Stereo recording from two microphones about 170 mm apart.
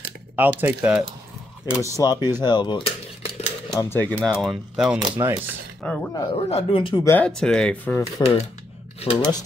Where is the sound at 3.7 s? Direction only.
15° left (ahead or behind).